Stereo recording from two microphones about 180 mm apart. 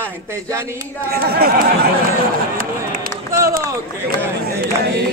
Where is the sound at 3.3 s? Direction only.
15° right (ahead or behind).